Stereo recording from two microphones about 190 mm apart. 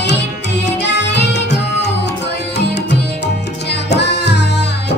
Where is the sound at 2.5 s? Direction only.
65° left (ahead or behind).